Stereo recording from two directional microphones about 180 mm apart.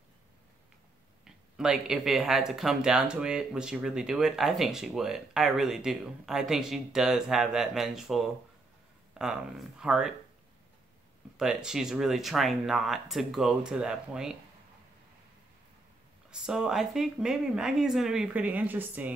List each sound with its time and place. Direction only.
1.2 s speech: 5° right (ahead or behind)
11.3 s speech: 5° right (ahead or behind)
16.3 s speech: 5° right (ahead or behind)